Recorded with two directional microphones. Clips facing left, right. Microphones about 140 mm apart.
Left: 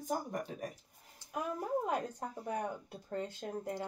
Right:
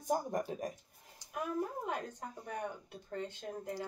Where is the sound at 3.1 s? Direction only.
40° left (ahead or behind).